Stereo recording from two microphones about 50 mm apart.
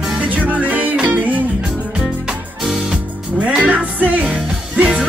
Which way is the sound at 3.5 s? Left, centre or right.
Right.